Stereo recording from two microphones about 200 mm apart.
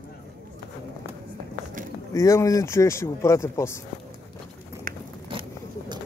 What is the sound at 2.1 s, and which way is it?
Speech, 15° left (ahead or behind).